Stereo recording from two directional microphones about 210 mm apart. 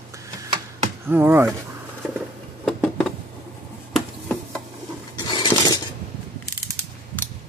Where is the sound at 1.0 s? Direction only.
10° right (ahead or behind).